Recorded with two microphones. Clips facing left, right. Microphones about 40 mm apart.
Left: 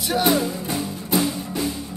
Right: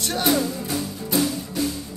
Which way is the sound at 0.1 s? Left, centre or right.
Centre.